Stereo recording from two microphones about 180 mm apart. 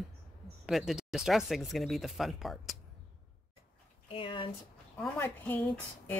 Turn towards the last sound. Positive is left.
turn(degrees=10)  # may be behind; listen again after turning